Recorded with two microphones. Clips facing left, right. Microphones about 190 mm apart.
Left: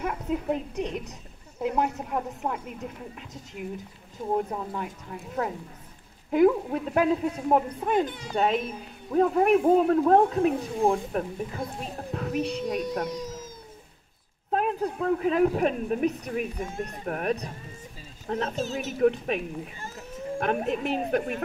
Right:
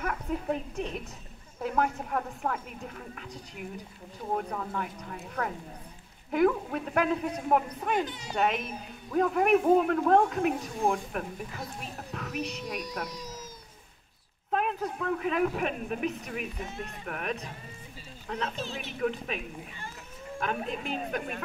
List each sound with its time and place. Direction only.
0.0 s speech: 20° left (ahead or behind)
8.0 s a child's voice: 55° left (ahead or behind)
8.4 s speech: 30° left (ahead or behind)
12.6 s a child's voice: 45° left (ahead or behind)
13.1 s a sound: 50° left (ahead or behind)
14.5 s a child's voice: 35° left (ahead or behind)
20.8 s a woman's voice: 65° left (ahead or behind)